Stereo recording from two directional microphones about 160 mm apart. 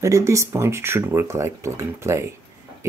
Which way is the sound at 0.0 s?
20° right (ahead or behind).